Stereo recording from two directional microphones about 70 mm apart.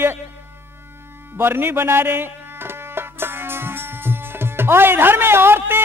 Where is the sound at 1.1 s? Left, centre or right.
Right.